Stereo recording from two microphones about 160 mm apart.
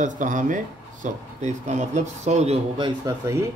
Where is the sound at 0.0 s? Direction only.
50° right (ahead or behind).